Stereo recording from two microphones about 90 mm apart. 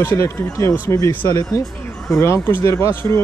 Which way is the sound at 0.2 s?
35° left (ahead or behind).